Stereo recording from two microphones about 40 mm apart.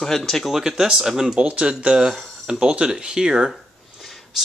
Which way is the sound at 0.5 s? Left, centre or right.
Centre.